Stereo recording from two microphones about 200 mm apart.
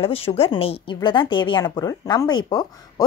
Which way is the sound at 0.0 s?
30° left (ahead or behind).